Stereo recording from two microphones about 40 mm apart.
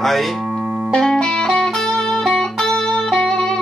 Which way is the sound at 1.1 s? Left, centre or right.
Centre.